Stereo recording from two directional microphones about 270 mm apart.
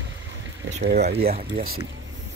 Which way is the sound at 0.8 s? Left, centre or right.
Right.